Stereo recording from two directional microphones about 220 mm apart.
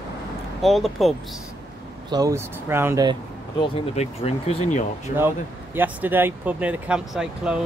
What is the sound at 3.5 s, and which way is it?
Speech, 25° left (ahead or behind).